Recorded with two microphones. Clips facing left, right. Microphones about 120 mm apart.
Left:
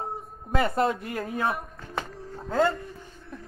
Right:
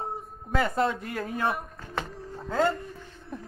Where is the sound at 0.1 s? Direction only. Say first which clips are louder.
Left 1 dB; 5° left (ahead or behind).